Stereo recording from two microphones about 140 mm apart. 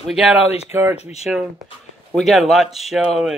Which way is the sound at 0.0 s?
Centre (ahead or behind).